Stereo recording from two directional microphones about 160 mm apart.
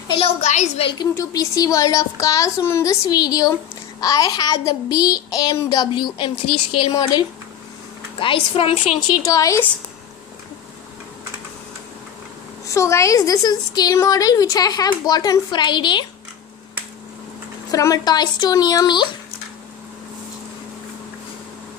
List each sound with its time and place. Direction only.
0.1 s a woman's voice: 40° left (ahead or behind)
0.9 s a woman's voice: 20° left (ahead or behind)
9.2 s speech: 20° left (ahead or behind)
12.6 s speech: 20° left (ahead or behind)
17.6 s speech: 20° left (ahead or behind)